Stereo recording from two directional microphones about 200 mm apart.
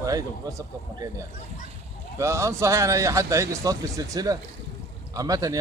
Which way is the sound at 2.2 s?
15° right (ahead or behind).